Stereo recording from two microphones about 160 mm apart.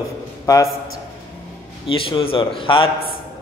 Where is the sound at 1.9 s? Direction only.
35° left (ahead or behind).